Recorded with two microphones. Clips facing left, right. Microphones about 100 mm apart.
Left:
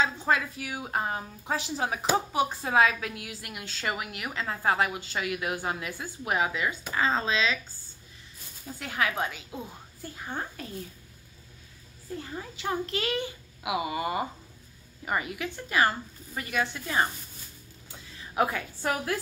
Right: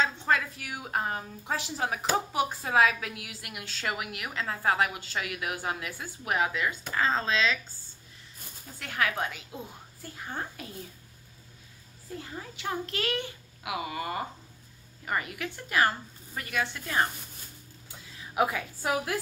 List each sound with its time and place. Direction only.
0.0 s a woman's voice: 10° left (ahead or behind)
8.7 s a woman's voice: 5° left (ahead or behind)
12.4 s a woman's voice: centre (ahead or behind)
13.8 s a woman's voice: 15° left (ahead or behind)
18.3 s a woman's voice: 5° right (ahead or behind)